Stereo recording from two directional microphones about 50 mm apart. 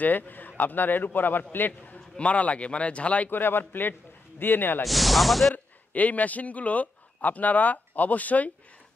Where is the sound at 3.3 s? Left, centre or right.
Left.